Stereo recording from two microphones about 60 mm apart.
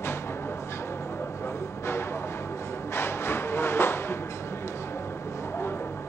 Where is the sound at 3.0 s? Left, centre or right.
Left.